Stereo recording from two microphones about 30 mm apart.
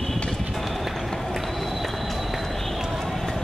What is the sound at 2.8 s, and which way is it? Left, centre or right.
Clip-clop, centre.